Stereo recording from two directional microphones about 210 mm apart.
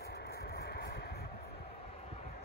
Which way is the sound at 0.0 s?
50° left (ahead or behind).